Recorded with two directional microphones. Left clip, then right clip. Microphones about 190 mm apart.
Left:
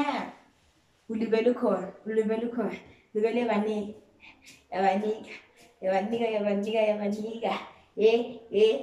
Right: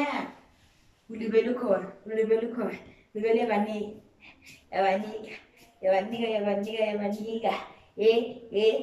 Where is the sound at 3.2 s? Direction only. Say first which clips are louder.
Right 2 dB; 15° left (ahead or behind).